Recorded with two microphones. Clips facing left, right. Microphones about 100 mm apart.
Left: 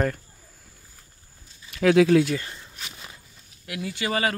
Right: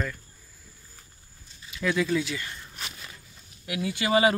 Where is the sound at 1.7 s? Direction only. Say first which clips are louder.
Left 9 dB; 70° left (ahead or behind).